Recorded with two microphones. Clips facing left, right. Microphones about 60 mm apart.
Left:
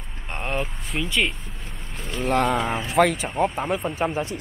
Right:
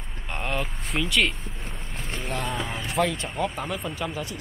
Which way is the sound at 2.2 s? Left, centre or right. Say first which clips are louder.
Left 10 dB; left.